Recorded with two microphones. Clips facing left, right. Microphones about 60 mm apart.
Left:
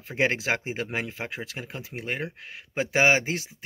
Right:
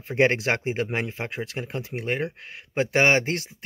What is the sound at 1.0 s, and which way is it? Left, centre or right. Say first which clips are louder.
Speech: right 3 dB; centre.